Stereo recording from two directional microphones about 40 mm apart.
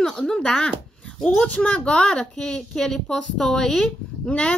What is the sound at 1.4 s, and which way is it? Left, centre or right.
A woman's voice, left.